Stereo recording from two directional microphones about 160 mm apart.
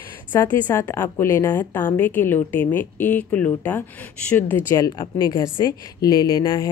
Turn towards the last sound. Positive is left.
turn(degrees=30)  # may be behind; listen again after turning